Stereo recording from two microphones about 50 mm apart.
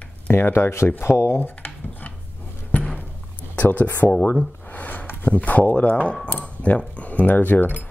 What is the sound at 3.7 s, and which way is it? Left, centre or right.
Speech, left.